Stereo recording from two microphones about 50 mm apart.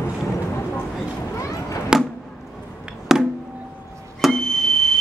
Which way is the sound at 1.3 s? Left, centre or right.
Left.